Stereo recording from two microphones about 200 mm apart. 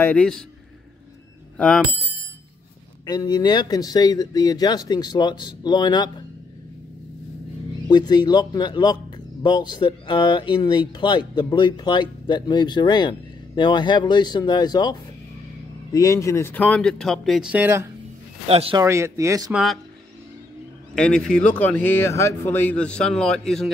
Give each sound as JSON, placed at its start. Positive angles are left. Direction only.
{"t": 0.0, "sound": "speech", "side_deg": 5}
{"t": 1.6, "sound": "speech", "side_deg": 5}
{"t": 3.1, "sound": "speech", "side_deg": 20}
{"t": 7.9, "sound": "speech", "side_deg": 20}
{"t": 18.5, "sound": "speech", "side_deg": -30}
{"t": 18.8, "sound": "speech", "side_deg": -15}
{"t": 19.5, "sound": "speech", "side_deg": 0}
{"t": 20.9, "sound": "speech", "side_deg": 5}